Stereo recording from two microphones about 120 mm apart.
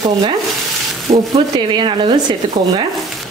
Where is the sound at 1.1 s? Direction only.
90° right.